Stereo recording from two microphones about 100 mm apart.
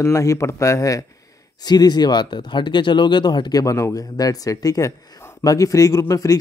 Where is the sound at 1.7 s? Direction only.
45° left (ahead or behind).